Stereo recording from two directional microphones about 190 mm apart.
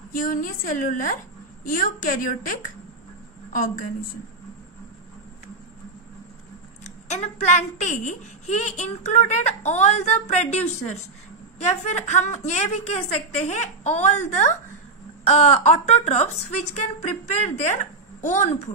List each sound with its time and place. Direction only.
0.1 s a woman's voice: 45° left (ahead or behind)
6.8 s speech: 35° left (ahead or behind)
11.6 s a woman's voice: 35° left (ahead or behind)